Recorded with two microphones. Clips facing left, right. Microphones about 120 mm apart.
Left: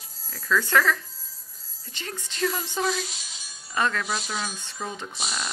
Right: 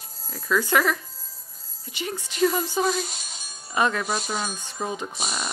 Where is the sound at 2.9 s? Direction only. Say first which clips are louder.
Right 3 dB; 50° right (ahead or behind).